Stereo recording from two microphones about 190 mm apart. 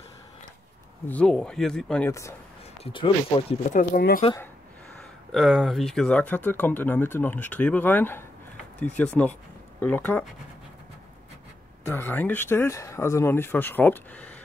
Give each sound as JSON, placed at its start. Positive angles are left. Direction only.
{"t": 1.0, "sound": "speech", "side_deg": 5}
{"t": 2.8, "sound": "speech", "side_deg": 25}
{"t": 3.7, "sound": "speech", "side_deg": 50}
{"t": 5.3, "sound": "speech", "side_deg": 0}
{"t": 11.9, "sound": "speech", "side_deg": 10}